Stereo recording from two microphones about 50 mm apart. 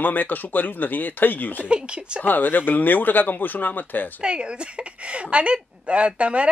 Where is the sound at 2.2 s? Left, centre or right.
Left.